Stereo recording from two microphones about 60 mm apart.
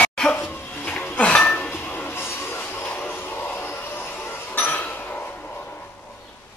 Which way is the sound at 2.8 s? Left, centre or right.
Left.